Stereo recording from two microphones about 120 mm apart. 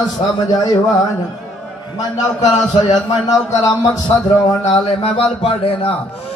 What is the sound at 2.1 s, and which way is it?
A man's voice, 35° left (ahead or behind).